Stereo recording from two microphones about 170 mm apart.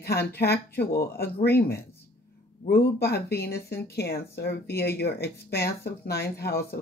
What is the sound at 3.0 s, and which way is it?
Speech, 70° left (ahead or behind).